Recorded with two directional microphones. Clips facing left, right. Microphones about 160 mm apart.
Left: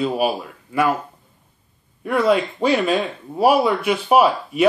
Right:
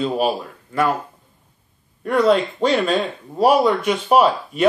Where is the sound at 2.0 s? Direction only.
5° left (ahead or behind).